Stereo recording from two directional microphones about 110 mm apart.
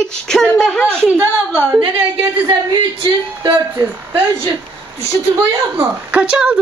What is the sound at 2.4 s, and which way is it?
A man's voice, 45° right (ahead or behind).